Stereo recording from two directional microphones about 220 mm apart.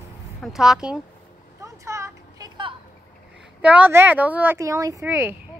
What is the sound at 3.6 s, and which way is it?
Speech, 5° right (ahead or behind).